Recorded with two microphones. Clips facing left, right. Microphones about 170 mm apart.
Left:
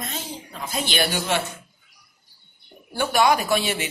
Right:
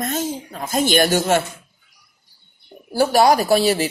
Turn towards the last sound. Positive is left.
turn(degrees=-35)  # may be behind; listen again after turning